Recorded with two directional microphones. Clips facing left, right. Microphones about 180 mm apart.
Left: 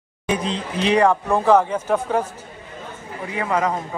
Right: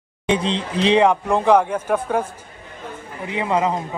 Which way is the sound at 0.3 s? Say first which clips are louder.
Right 3 dB; 30° right (ahead or behind).